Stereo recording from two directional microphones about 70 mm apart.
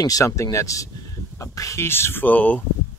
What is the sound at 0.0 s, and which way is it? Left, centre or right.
Speech, left.